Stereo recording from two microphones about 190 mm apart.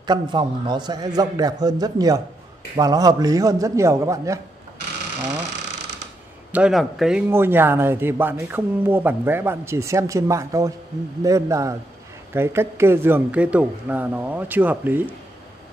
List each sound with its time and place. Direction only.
0.0 s a man's voice: 25° right (ahead or behind)
6.5 s a man's voice: 5° right (ahead or behind)